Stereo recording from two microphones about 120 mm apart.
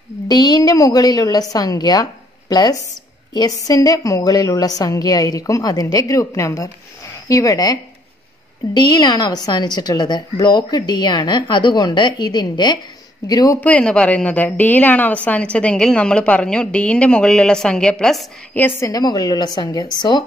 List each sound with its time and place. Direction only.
0.3 s a woman's voice: 35° left (ahead or behind)
13.6 s a woman's voice: 10° left (ahead or behind)
18.6 s a woman's voice: 20° left (ahead or behind); by 20.2 s 35° left (ahead or behind)